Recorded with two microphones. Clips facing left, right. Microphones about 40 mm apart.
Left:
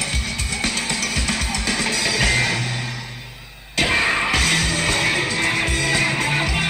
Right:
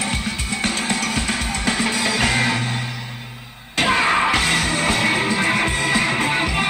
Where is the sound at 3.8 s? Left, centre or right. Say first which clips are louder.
Right 3 dB; centre.